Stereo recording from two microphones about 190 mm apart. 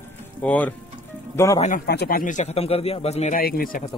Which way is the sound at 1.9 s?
55° left (ahead or behind).